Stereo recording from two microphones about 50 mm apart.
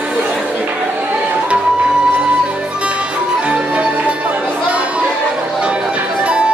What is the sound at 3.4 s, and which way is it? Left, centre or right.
Music, right.